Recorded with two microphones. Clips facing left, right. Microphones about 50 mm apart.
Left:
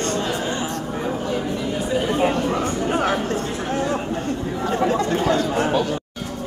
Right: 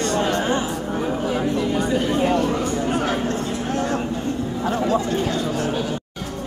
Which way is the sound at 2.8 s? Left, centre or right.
Left.